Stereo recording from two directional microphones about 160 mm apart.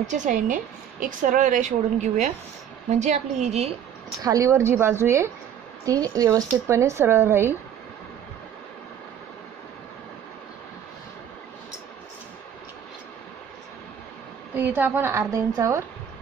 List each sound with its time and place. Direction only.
0.0 s a woman's voice: 50° right (ahead or behind)
4.2 s speech: 20° right (ahead or behind)
14.5 s a woman's voice: 10° right (ahead or behind)